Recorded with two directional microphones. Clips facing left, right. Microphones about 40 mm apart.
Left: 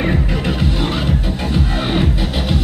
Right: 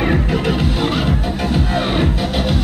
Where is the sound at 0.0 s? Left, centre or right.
Centre.